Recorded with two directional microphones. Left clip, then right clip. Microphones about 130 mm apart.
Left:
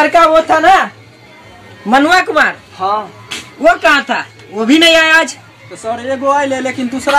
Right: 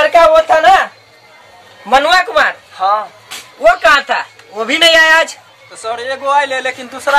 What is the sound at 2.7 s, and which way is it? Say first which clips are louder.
Speech: right 3 dB; 10° right (ahead or behind).